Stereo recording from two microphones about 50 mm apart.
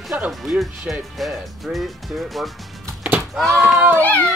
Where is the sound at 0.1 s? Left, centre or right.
Right.